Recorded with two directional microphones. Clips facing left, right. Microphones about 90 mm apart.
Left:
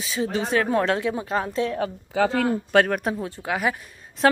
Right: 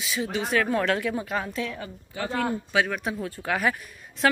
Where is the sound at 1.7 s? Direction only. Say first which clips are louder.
Left 11 dB; 85° left.